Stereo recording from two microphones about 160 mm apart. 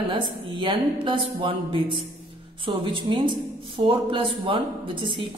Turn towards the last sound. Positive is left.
turn(degrees=-30)  # may be behind; listen again after turning